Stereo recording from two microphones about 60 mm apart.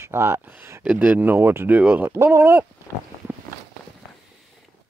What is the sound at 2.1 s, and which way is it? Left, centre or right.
Speech, right.